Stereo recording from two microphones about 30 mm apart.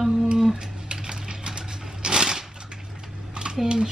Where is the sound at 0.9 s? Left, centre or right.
Right.